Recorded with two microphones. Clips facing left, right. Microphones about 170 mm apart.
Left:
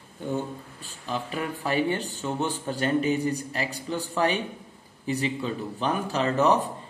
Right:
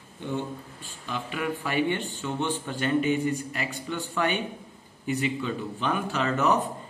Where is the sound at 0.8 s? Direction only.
40° left (ahead or behind).